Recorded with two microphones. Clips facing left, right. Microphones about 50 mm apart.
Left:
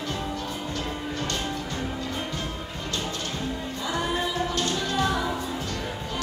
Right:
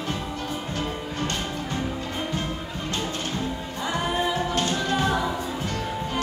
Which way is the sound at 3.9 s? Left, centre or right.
Right.